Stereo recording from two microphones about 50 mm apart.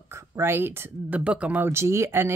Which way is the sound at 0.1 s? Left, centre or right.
Right.